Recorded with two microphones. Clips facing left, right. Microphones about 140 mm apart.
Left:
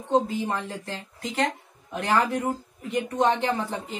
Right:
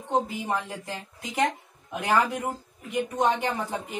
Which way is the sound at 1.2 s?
10° right (ahead or behind).